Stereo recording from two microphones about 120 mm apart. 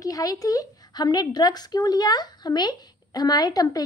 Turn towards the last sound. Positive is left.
turn(degrees=35)  # may be behind; listen again after turning